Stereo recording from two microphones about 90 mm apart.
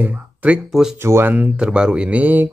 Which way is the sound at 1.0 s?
30° right (ahead or behind).